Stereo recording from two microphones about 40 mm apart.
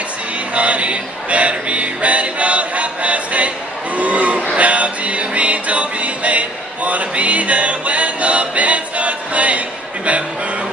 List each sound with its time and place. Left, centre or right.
0.6 s music: right